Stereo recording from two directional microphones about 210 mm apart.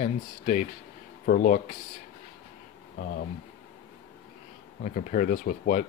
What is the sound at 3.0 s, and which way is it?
Speech, 45° left (ahead or behind).